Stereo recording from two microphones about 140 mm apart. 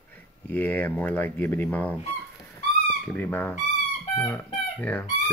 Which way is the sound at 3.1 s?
15° left (ahead or behind).